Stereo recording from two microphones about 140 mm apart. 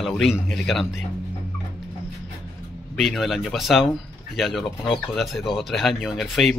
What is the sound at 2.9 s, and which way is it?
Speech, centre (ahead or behind).